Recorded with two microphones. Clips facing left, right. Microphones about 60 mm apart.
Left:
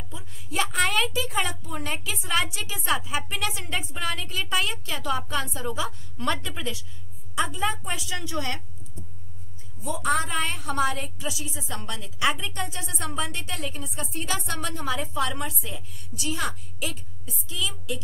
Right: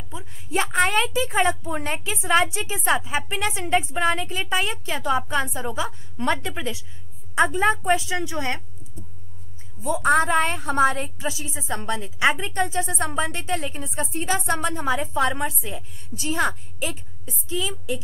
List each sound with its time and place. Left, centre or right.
0.1 s a woman's voice: right
7.3 s a woman's voice: right
8.0 s a woman's voice: right
9.8 s a woman's voice: right